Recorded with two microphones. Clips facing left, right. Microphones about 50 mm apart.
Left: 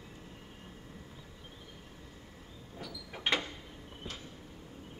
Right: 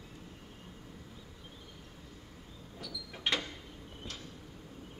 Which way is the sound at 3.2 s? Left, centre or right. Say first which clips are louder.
Left 2 dB; left.